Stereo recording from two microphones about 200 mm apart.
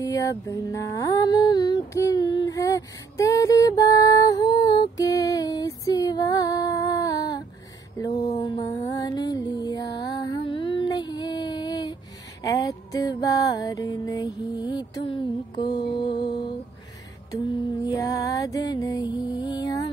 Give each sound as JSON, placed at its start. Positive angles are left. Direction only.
{"t": 0.0, "sound": "music", "side_deg": 15}
{"t": 8.0, "sound": "mantra", "side_deg": 20}
{"t": 12.4, "sound": "music", "side_deg": 20}
{"t": 17.8, "sound": "music", "side_deg": 15}